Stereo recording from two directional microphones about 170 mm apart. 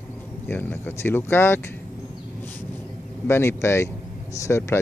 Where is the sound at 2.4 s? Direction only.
10° left (ahead or behind).